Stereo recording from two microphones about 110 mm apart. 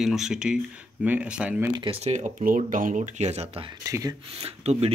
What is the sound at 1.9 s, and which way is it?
Speech, 85° right.